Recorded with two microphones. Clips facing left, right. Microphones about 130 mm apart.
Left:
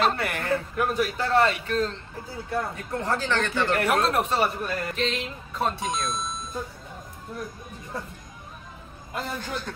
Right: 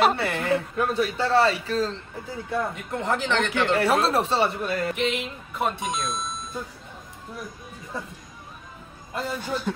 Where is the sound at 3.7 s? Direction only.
30° right (ahead or behind).